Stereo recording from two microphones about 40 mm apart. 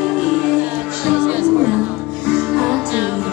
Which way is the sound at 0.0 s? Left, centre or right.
Centre.